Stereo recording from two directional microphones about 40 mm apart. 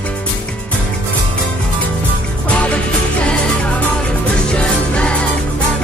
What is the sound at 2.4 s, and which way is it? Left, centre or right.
Music, left.